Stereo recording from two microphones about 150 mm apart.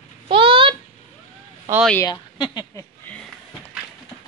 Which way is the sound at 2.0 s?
25° left (ahead or behind).